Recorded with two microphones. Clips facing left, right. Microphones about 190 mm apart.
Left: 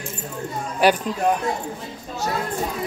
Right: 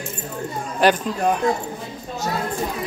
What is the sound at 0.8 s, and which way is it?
Speech, 10° left (ahead or behind).